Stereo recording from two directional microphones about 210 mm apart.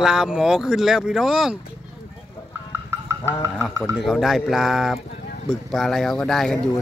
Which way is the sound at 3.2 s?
10° left (ahead or behind).